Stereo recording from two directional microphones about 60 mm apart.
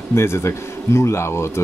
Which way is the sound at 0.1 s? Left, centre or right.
Left.